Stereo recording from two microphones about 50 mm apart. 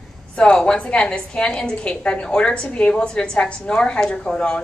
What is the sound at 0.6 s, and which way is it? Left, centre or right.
A woman's voice, centre.